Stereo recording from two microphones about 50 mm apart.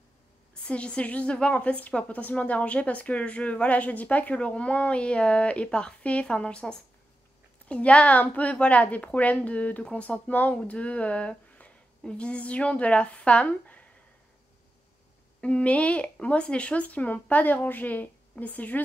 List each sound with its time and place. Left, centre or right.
0.7 s a woman's voice: left
7.6 s a woman's voice: left
15.4 s a woman's voice: left